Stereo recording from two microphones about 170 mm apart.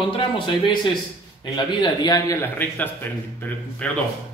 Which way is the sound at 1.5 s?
25° left (ahead or behind).